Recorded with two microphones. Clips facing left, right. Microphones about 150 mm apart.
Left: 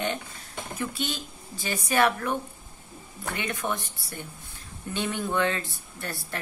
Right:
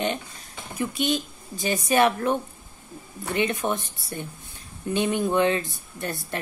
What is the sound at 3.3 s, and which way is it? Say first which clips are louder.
A woman's voice: right 6 dB; 20° right (ahead or behind).